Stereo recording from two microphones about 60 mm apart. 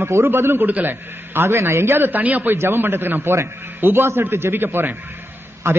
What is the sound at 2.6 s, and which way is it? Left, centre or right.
A man's voice, right.